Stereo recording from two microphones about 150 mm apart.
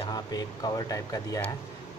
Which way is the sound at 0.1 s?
25° left (ahead or behind).